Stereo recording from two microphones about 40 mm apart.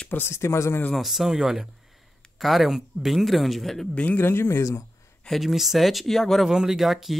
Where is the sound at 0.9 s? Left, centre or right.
Centre.